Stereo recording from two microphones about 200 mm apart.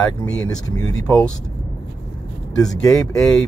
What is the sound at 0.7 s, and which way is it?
Speech, 20° left (ahead or behind).